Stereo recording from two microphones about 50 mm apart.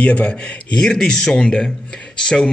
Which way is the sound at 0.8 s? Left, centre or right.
Centre.